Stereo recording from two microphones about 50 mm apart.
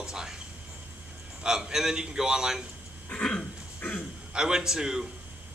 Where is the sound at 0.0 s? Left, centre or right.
Centre.